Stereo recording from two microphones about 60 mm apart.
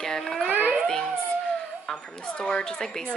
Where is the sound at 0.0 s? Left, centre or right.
Centre.